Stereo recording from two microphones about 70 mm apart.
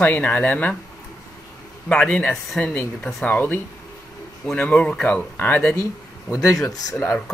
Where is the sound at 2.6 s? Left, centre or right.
Left.